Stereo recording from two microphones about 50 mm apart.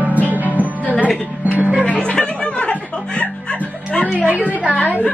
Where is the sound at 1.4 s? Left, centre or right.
Right.